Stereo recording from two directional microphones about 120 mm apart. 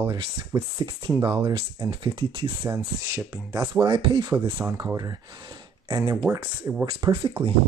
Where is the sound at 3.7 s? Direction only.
45° right (ahead or behind).